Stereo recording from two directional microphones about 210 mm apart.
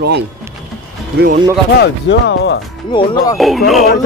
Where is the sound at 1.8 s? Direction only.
55° left (ahead or behind).